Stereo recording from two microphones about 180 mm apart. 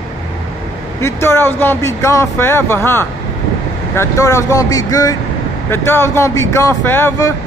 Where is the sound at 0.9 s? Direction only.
15° left (ahead or behind).